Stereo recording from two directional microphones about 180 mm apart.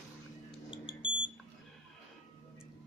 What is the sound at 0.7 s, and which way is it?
Smoke detector, 30° left (ahead or behind).